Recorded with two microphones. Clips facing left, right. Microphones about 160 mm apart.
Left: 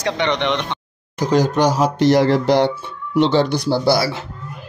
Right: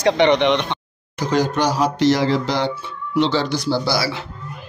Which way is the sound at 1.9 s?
55° left (ahead or behind).